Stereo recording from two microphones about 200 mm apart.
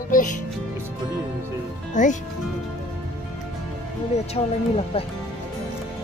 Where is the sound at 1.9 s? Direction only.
40° left (ahead or behind).